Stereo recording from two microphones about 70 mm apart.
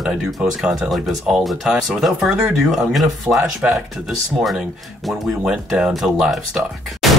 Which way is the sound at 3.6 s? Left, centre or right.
Centre.